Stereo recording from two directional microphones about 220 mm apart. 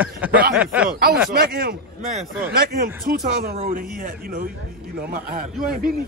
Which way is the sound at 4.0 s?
40° right (ahead or behind).